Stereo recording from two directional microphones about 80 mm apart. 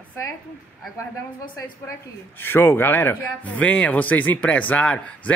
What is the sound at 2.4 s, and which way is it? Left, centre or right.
Speech, left.